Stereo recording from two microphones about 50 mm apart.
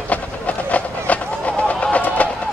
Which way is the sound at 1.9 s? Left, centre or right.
Left.